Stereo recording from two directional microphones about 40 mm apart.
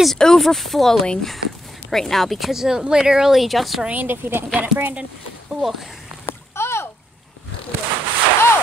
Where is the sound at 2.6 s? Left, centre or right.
Centre.